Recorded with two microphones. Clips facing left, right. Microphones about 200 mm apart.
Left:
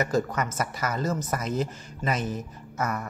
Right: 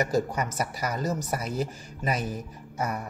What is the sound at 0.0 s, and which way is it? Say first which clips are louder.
Speech: even; 15° right (ahead or behind).